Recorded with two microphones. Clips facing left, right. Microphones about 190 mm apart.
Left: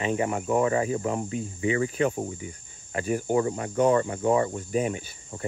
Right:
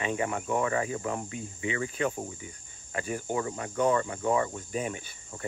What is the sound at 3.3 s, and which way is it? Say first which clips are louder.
Cricket: left 6 dB; 30° left (ahead or behind).